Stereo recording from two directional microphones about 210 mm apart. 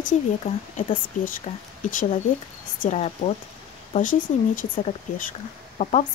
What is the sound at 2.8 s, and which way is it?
Speech, 30° left (ahead or behind).